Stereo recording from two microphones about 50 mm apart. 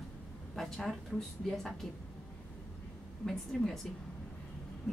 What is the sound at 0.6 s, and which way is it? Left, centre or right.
Speech, centre.